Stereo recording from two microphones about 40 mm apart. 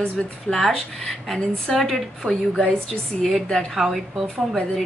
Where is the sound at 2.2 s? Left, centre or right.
Right.